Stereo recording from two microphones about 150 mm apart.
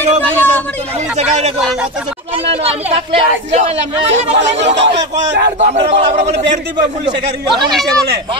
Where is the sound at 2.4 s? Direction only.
40° right (ahead or behind).